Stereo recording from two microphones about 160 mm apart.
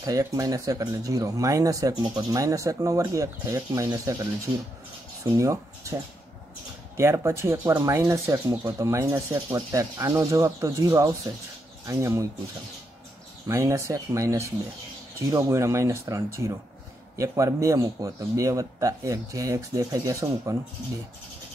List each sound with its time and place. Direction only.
0.0 s speech: 20° right (ahead or behind)
5.4 s speech: 20° right (ahead or behind)
7.0 s speech: 15° right (ahead or behind)
13.5 s speech: 20° right (ahead or behind)